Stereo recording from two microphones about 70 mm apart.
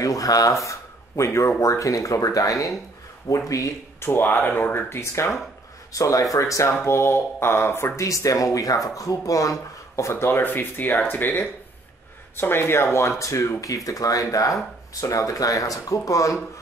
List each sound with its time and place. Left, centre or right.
0.0 s a sound: left
1.6 s speech: left
4.0 s speech: left
5.9 s speech: left